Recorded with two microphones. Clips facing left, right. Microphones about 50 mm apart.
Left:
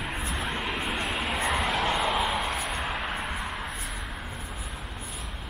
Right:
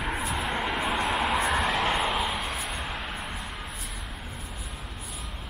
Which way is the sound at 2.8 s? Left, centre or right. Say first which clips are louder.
Left 3 dB; centre.